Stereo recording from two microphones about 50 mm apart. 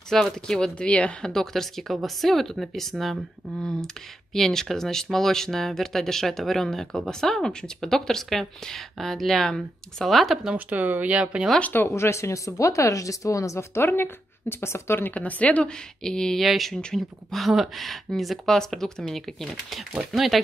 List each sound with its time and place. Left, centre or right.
0.1 s speech: centre
1.3 s speech: centre
3.6 s speech: centre
10.7 s speech: right
11.8 s speech: left
15.0 s speech: left
16.0 s speech: centre
16.3 s speech: centre
20.1 s speech: centre